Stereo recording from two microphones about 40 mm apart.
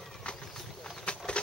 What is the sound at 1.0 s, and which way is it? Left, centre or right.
Bird, left.